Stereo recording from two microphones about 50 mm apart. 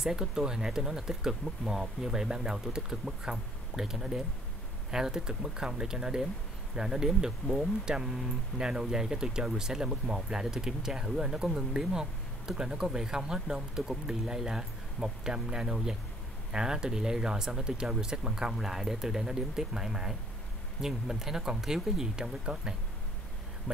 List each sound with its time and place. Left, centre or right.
0.0 s speech: centre